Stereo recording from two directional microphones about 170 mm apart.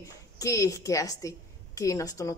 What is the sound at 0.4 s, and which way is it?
A woman's voice, 20° left (ahead or behind).